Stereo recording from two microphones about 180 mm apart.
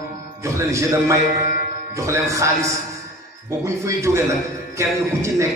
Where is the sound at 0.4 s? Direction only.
15° right (ahead or behind).